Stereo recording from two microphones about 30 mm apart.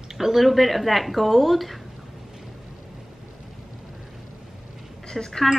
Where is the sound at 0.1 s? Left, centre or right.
Centre.